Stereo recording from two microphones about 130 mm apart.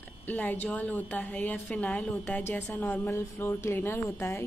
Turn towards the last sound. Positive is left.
turn(degrees=20)  # may be behind; listen again after turning